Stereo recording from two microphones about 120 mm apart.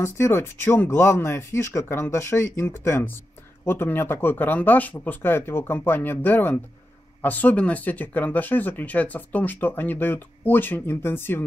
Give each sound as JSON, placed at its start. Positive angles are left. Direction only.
{"t": 0.0, "sound": "speech", "side_deg": 20}